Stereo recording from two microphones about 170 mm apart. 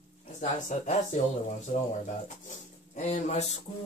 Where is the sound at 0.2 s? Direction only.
40° left (ahead or behind).